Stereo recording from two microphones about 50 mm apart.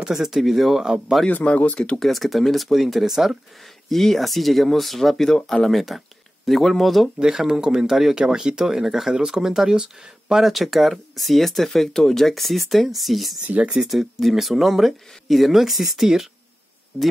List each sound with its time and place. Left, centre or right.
0.0 s speech: centre
1.3 s speech: left
2.0 s speech: centre
7.2 s speech: centre
10.4 s speech: centre
13.6 s speech: right
13.8 s speech: centre